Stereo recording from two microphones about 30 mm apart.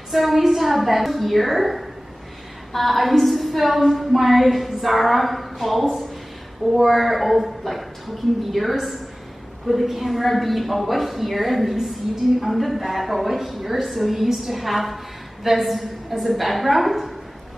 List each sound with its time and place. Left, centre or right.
0.1 s a woman's voice: centre